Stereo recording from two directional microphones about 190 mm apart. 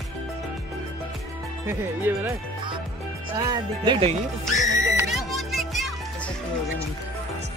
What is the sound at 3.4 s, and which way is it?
Speech, 25° right (ahead or behind).